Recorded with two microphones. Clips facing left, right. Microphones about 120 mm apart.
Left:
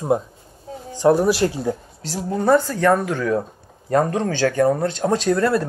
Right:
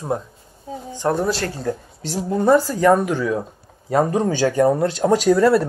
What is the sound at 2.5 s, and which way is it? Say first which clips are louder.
Speech: right 1 dB; 10° right (ahead or behind).